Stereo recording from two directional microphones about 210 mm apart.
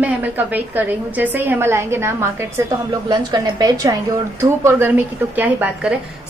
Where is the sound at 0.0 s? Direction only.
10° right (ahead or behind).